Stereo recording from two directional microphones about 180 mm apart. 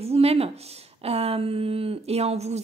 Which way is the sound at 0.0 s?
35° right (ahead or behind).